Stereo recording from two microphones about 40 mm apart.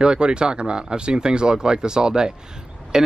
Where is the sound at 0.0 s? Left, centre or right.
Right.